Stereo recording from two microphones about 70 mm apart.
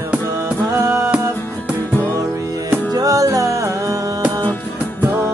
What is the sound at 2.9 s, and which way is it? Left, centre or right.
Music, right.